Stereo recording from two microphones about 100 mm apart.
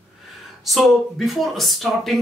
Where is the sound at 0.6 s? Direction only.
Centre (ahead or behind).